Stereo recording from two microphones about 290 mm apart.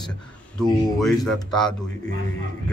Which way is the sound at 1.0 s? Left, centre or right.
Centre.